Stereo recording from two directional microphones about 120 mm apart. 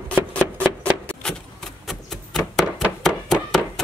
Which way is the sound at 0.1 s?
10° left (ahead or behind).